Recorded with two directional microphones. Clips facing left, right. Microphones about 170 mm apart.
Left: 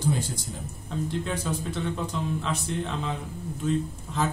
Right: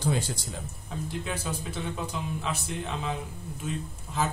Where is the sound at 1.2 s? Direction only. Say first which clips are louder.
Left 4 dB; 5° right (ahead or behind).